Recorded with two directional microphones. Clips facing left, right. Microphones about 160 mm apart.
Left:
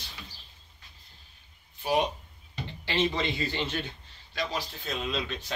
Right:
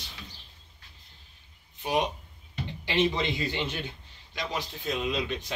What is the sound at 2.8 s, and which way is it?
Speech, 15° right (ahead or behind).